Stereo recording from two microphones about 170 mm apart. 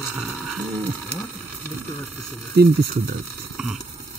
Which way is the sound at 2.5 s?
70° right (ahead or behind).